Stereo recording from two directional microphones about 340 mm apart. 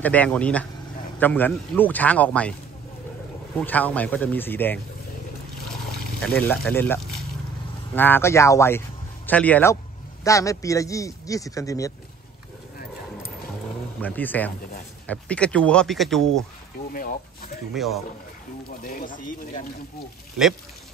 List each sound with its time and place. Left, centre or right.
0.0 s speech: centre
3.5 s speech: centre
6.2 s a man's voice: centre
14.0 s speech: centre
16.9 s speech: left
17.7 s speech: centre
18.8 s speech: left